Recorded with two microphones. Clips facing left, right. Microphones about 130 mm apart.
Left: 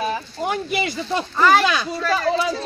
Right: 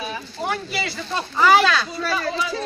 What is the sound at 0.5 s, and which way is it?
Speech, 15° left (ahead or behind).